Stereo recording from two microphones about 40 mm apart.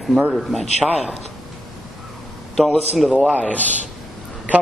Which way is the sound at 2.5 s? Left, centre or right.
Centre.